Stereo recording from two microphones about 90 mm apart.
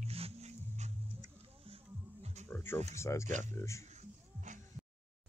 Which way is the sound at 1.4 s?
90° right.